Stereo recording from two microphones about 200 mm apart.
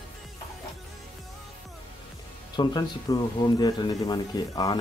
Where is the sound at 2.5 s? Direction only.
20° left (ahead or behind).